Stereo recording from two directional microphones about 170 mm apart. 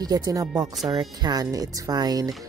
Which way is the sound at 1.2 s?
20° right (ahead or behind).